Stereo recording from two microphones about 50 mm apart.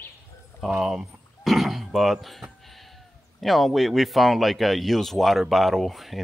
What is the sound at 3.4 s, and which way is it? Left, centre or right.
Speech, centre.